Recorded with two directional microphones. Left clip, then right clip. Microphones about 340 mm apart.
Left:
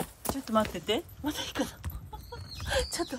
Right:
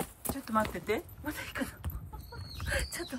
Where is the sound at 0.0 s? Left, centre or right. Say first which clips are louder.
Left 3 dB; centre.